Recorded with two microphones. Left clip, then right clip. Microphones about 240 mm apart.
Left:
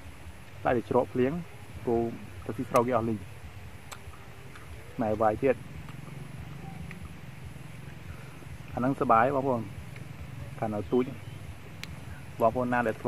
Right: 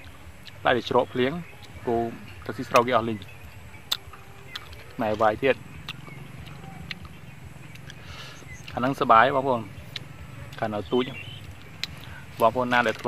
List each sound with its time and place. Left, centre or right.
0.7 s speech: centre
4.9 s speech: centre
8.7 s speech: centre
12.4 s speech: centre